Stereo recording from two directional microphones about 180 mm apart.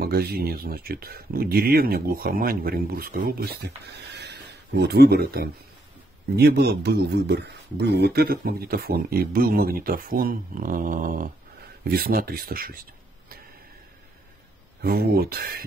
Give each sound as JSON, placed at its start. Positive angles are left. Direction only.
{"t": 0.0, "sound": "speech", "side_deg": -60}
{"t": 14.8, "sound": "speech", "side_deg": -60}